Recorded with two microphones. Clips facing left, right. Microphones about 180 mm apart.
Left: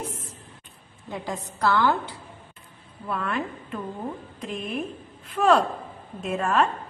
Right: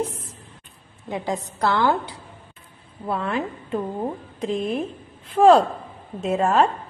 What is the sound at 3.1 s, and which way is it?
A woman's voice, 30° right (ahead or behind).